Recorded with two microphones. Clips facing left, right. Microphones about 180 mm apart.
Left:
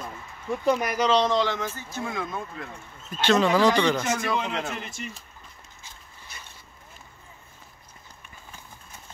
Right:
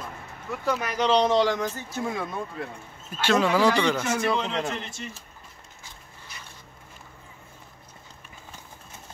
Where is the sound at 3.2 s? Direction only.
10° right (ahead or behind).